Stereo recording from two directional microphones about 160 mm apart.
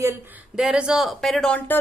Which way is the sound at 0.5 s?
5° right (ahead or behind).